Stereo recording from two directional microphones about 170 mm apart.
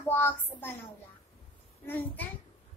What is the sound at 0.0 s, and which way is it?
Speech, 10° left (ahead or behind).